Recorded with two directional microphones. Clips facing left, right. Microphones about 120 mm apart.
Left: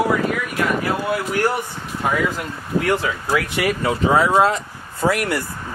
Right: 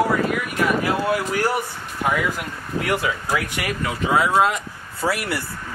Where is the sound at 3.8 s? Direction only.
30° left (ahead or behind).